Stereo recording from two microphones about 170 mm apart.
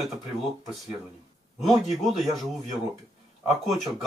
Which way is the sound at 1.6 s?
Centre (ahead or behind).